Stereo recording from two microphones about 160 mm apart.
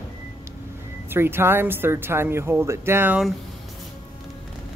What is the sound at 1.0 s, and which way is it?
Speech, 15° right (ahead or behind).